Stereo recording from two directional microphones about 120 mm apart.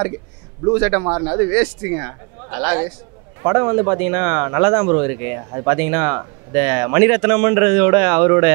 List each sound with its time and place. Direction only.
0.7 s a man's voice: 20° right (ahead or behind)